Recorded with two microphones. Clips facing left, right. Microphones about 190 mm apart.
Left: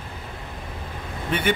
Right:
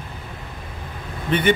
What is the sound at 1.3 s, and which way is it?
Speech, 5° left (ahead or behind).